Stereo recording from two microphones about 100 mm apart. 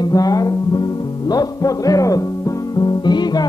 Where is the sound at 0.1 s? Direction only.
40° left (ahead or behind).